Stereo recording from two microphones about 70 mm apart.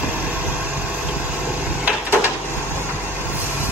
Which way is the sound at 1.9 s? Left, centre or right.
Right.